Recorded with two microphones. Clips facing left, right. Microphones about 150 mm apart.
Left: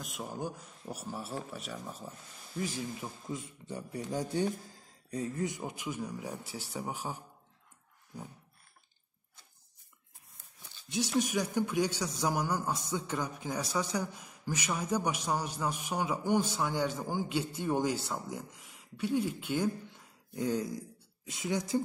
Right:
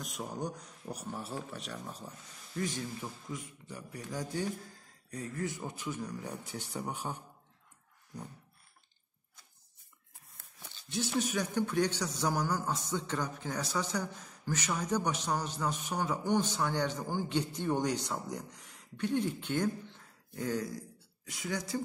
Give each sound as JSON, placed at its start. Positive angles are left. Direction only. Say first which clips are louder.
{"t": 0.0, "sound": "speech", "louder": "even", "side_deg": 0}
{"t": 3.3, "sound": "a man's voice", "louder": "left 3 dB", "side_deg": 25}
{"t": 11.1, "sound": "a man's voice", "louder": "left 2 dB", "side_deg": 10}